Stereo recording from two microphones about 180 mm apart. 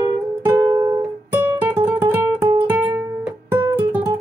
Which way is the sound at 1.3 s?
10° right (ahead or behind).